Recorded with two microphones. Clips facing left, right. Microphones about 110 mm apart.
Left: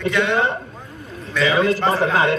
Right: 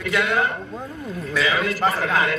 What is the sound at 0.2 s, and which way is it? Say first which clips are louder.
Speech: left 3 dB; 25° left (ahead or behind).